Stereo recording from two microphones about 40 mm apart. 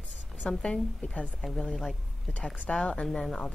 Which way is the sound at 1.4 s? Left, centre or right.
Centre.